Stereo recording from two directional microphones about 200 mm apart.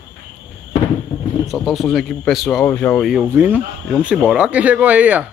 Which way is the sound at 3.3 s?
10° right (ahead or behind).